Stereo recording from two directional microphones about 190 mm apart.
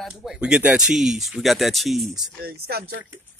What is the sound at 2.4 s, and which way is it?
Speech, 55° right (ahead or behind).